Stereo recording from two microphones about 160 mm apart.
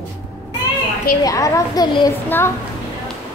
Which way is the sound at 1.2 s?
20° left (ahead or behind).